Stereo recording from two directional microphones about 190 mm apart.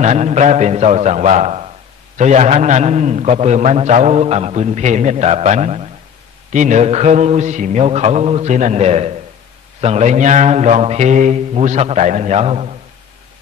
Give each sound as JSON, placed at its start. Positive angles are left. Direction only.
{"t": 0.0, "sound": "a man's voice", "side_deg": -35}